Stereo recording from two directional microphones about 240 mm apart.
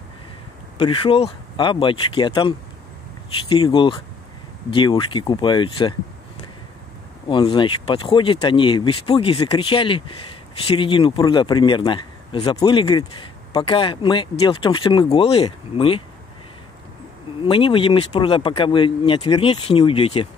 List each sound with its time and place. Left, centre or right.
0.7 s speech: left
7.2 s speech: centre
17.4 s speech: left